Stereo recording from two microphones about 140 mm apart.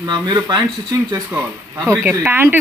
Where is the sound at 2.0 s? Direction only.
15° right (ahead or behind).